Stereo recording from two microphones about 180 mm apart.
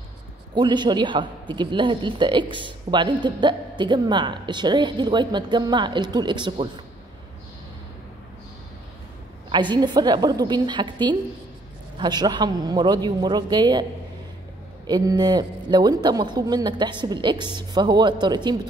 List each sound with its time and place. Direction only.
0.6 s a man's voice: 25° right (ahead or behind)
9.5 s a man's voice: 25° right (ahead or behind)
14.9 s a man's voice: 20° right (ahead or behind)